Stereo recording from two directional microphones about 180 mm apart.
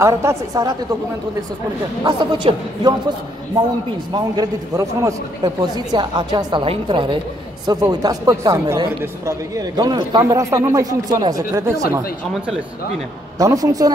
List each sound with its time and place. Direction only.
0.0 s speech: 15° right (ahead or behind)
2.0 s speech: 25° right (ahead or behind)
4.1 s speech: 20° right (ahead or behind)
13.4 s speech: 20° right (ahead or behind)